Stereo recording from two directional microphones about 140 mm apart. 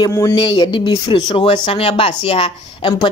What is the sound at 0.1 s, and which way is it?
Speech, 25° left (ahead or behind).